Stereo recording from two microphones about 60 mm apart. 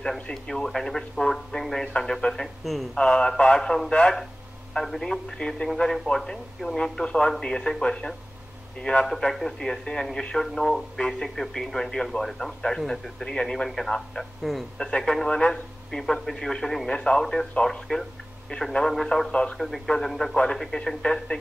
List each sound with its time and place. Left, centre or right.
0.0 s a man's voice: centre
3.0 s a man's voice: centre
19.3 s a man's voice: centre
19.6 s a man's voice: centre